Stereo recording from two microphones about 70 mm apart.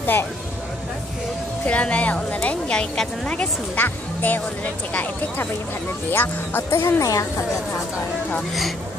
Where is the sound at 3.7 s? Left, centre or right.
Left.